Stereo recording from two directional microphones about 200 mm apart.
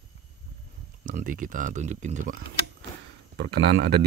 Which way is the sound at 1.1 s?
40° right (ahead or behind).